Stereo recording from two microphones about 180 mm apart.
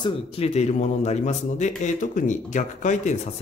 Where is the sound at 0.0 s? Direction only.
30° left (ahead or behind).